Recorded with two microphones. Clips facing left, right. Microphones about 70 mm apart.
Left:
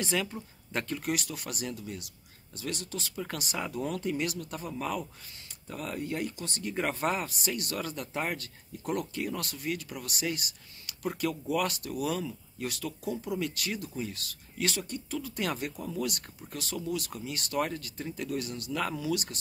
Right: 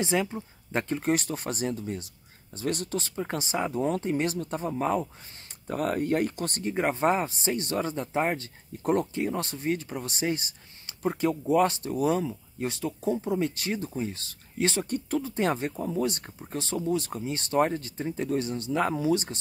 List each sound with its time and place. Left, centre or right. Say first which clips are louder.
0.0 s speech: right 5 dB; right
3.2 s speech: right 5 dB; right
5.7 s speech: right 9 dB; right
6.6 s speech: right 5 dB; right
14.9 s speech: right 7 dB; right
15.2 s speech: right 6 dB; right